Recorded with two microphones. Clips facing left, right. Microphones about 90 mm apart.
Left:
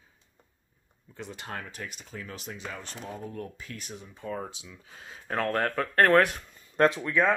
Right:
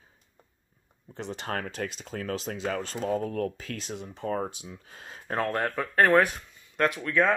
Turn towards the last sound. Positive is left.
turn(degrees=15)  # may be behind; listen again after turning